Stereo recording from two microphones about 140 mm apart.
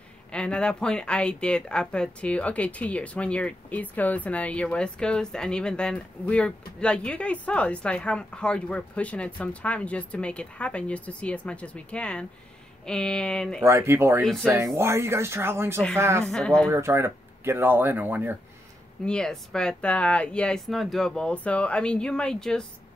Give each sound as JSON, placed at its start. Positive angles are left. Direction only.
{"t": 0.3, "sound": "speech", "side_deg": 5}
{"t": 13.7, "sound": "speech", "side_deg": -20}
{"t": 16.3, "sound": "speech", "side_deg": 5}
{"t": 16.6, "sound": "speech", "side_deg": -20}
{"t": 19.0, "sound": "speech", "side_deg": 5}